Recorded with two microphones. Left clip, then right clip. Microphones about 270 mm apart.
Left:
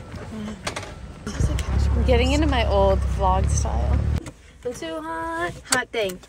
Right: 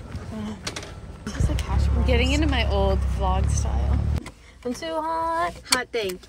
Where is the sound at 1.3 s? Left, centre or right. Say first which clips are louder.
Even; right.